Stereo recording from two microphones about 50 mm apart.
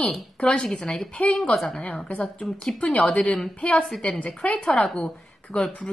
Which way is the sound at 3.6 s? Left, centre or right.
Left.